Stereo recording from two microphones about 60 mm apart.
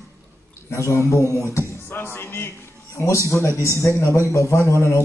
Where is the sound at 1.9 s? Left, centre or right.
Left.